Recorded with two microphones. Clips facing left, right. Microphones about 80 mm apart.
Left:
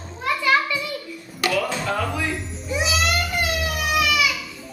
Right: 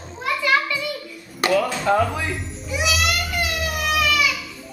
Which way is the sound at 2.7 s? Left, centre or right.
Left.